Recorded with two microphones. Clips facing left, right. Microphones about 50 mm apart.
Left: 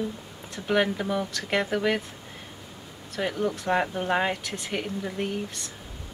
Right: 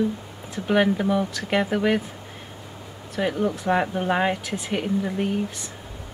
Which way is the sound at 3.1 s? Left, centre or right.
Centre.